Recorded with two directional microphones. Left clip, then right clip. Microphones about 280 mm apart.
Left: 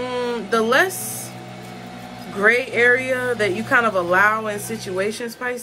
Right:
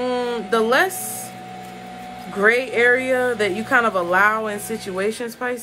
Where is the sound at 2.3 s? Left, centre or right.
Centre.